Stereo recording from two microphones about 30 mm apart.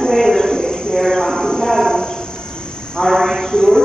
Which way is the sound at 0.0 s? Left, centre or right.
Left.